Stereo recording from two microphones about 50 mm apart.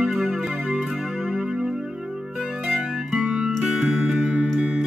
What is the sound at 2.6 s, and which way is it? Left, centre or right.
Music, centre.